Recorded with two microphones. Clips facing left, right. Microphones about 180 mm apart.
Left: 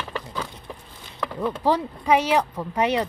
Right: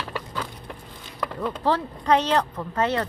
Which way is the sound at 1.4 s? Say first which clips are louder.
Left 2 dB; 15° left (ahead or behind).